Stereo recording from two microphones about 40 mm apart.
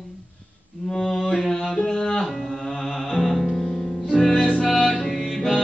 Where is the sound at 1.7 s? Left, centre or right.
Left.